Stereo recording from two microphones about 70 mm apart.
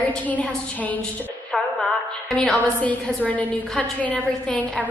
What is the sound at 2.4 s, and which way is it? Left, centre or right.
A woman's voice, left.